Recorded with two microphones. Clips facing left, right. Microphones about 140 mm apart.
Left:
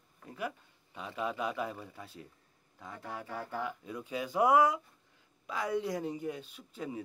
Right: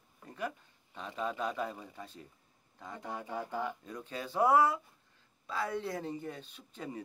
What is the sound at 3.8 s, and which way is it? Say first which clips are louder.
Speech: left 4 dB; 10° left (ahead or behind).